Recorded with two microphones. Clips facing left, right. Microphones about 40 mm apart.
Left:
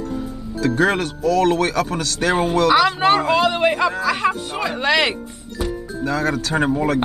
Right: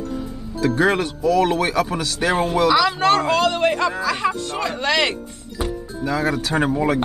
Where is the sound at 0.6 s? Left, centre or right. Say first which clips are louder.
Even; centre.